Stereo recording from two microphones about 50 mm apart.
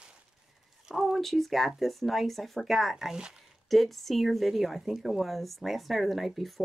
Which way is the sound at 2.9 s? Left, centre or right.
Centre.